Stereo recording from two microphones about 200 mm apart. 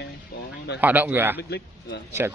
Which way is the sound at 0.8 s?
10° right (ahead or behind).